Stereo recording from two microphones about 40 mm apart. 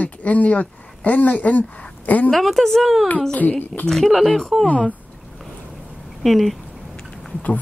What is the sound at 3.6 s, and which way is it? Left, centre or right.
Speech, left.